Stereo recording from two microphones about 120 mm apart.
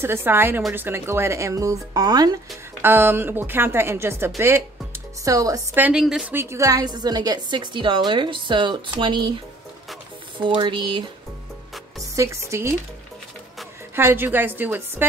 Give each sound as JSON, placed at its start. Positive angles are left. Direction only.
{"t": 0.0, "sound": "speech", "side_deg": -20}
{"t": 2.8, "sound": "speech", "side_deg": -20}
{"t": 5.8, "sound": "a woman's voice", "side_deg": -10}
{"t": 6.3, "sound": "a woman's voice", "side_deg": -20}
{"t": 10.4, "sound": "a woman's voice", "side_deg": -45}
{"t": 12.2, "sound": "speech", "side_deg": -25}
{"t": 13.9, "sound": "a woman's voice", "side_deg": -20}